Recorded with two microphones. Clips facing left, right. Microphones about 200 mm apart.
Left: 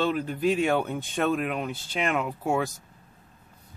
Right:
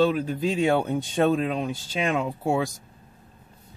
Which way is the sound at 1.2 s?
25° right (ahead or behind).